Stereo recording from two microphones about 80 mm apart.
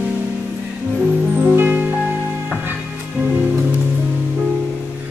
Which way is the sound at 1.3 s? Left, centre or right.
Right.